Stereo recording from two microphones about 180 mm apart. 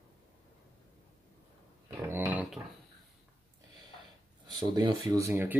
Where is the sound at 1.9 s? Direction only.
15° right (ahead or behind).